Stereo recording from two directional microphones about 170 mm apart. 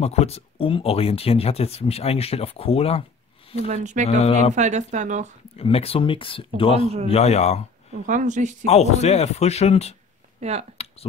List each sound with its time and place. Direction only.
0.0 s speech: 40° left (ahead or behind)
3.6 s speech: 45° right (ahead or behind)
4.2 s speech: 40° left (ahead or behind)
4.6 s speech: 45° right (ahead or behind)
5.6 s speech: 35° left (ahead or behind)
7.9 s speech: 50° right (ahead or behind)
8.6 s speech: 40° left (ahead or behind)
10.4 s speech: 40° right (ahead or behind)
10.8 s a sound: 35° left (ahead or behind)